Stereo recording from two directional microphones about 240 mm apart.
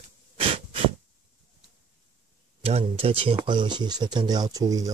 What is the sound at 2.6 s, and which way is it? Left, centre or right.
Speech, right.